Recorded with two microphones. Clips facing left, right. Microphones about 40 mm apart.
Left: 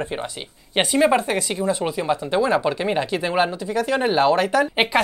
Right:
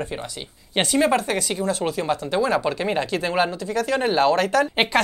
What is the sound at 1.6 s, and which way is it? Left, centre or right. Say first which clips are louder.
Speech: left 2 dB; centre.